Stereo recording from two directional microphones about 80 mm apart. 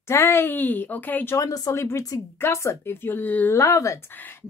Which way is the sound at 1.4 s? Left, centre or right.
Left.